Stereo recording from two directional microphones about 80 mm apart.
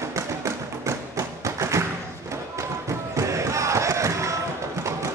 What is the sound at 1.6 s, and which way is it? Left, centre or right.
Thump, right.